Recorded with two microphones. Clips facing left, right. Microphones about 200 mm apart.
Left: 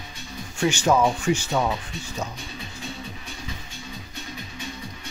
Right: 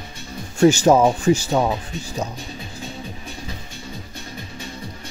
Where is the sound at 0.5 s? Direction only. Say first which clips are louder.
Right 7 dB; 40° right (ahead or behind).